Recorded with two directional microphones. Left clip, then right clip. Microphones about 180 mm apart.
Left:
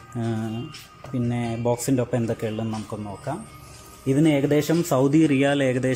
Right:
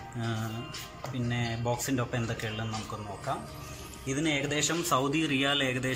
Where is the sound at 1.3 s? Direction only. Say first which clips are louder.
Left 7 dB; 35° left (ahead or behind).